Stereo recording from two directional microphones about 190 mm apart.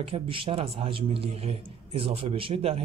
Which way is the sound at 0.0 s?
30° right (ahead or behind).